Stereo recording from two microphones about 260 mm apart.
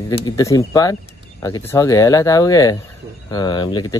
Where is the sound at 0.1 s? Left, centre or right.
Centre.